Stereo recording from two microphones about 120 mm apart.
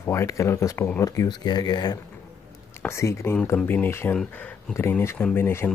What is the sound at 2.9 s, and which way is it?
Speech, 25° left (ahead or behind).